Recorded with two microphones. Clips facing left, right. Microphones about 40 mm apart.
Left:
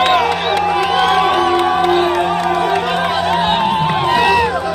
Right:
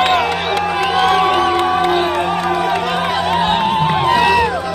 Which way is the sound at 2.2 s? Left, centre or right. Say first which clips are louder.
Left 1 dB; centre.